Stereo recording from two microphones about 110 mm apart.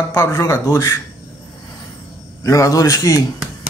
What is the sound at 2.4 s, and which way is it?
Speech, 30° left (ahead or behind).